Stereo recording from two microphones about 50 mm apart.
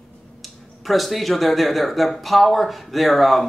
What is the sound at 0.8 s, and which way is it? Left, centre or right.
Speech, centre.